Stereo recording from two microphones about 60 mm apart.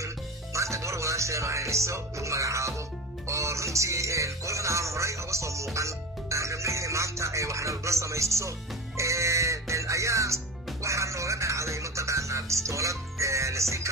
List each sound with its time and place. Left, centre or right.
0.0 s music: right